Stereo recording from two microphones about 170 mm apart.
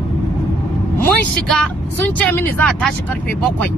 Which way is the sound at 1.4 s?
5° left (ahead or behind).